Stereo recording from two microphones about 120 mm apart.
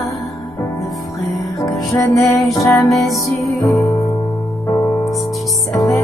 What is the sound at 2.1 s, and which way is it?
Music, centre (ahead or behind).